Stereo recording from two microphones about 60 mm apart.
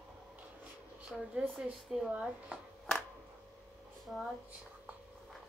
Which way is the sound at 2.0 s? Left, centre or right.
Centre.